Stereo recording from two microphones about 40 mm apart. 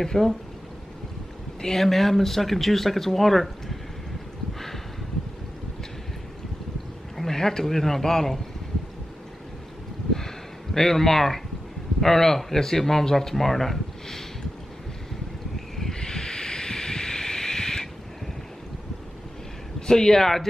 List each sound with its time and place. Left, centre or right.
0.0 s speech: centre
1.6 s speech: centre
7.2 s speech: centre
10.1 s a sound: centre
12.0 s speech: centre
15.5 s a sound: centre
19.9 s speech: centre